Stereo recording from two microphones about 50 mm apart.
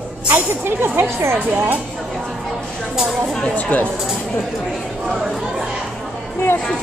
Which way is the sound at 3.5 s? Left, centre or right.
Left.